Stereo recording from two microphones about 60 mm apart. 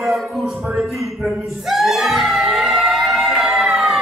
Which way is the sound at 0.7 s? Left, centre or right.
Centre.